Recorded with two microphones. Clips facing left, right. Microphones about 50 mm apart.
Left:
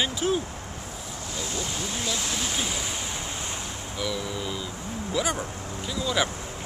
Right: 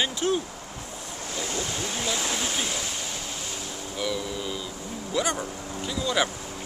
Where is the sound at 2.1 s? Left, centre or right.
Centre.